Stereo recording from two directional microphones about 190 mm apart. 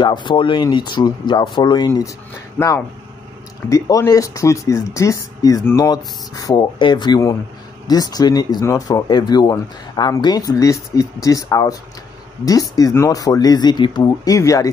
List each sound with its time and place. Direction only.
0.0 s speech: 25° left (ahead or behind)
2.6 s speech: 10° left (ahead or behind)